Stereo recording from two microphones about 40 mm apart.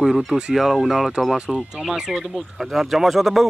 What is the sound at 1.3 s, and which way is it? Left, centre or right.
Speech, centre.